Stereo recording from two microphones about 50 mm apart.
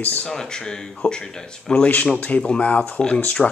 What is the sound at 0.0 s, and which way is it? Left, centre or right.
Speech, left.